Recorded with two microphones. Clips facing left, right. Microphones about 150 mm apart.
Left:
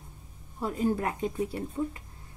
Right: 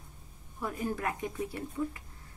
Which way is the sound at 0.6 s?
25° left (ahead or behind).